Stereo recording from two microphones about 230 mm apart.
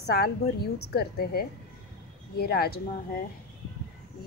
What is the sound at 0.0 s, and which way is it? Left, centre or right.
A woman's voice, left.